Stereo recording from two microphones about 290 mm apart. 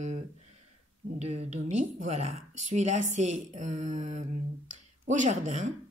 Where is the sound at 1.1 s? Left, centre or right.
Right.